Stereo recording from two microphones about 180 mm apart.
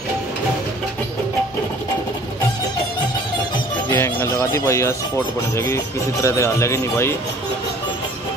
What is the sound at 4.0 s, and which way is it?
Speech, 15° left (ahead or behind).